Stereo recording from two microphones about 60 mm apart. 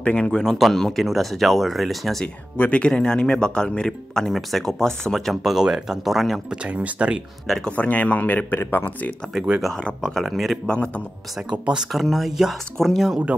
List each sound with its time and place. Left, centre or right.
0.0 s speech: centre
2.2 s speech: left; by 6.4 s centre
6.5 s speech: centre
7.4 s speech: centre
7.7 s speech: left
10.1 s speech: centre
11.5 s speech: centre
11.9 s speech: centre